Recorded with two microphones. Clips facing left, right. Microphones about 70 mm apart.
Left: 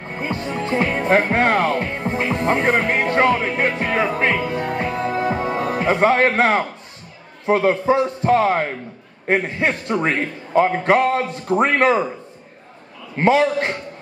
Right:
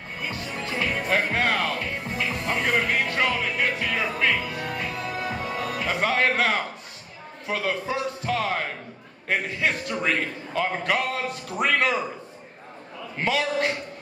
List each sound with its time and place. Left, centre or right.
0.0 s music: left
7.4 s a man's voice: left
13.2 s a man's voice: left